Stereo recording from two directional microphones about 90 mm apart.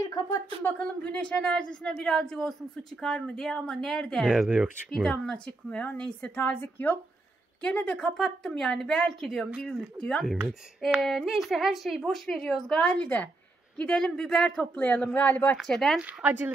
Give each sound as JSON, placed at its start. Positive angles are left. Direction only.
{"t": 0.0, "sound": "a sound", "side_deg": 40}
{"t": 0.7, "sound": "a woman's voice", "side_deg": 15}
{"t": 9.9, "sound": "a woman's voice", "side_deg": 10}
{"t": 15.6, "sound": "a woman's voice", "side_deg": 5}
{"t": 16.0, "sound": "speech", "side_deg": -15}